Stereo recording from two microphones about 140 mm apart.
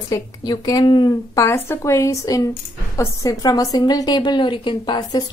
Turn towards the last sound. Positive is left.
turn(degrees=30)  # may be behind; listen again after turning